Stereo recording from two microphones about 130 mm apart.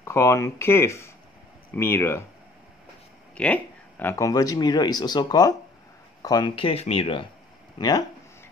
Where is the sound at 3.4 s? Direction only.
10° left (ahead or behind); by 6.5 s 30° left (ahead or behind).